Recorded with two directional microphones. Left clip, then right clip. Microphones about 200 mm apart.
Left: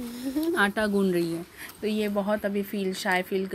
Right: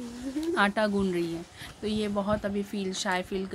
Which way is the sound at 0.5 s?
Centre (ahead or behind).